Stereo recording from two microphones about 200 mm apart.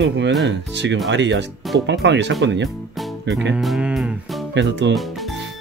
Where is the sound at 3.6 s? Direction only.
5° right (ahead or behind).